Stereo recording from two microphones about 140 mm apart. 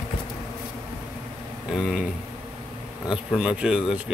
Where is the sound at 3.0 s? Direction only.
5° right (ahead or behind).